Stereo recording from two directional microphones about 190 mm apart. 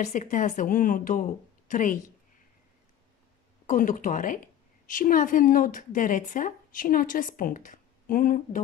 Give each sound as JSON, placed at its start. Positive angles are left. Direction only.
{"t": 0.0, "sound": "a woman's voice", "side_deg": 40}
{"t": 3.6, "sound": "a woman's voice", "side_deg": 45}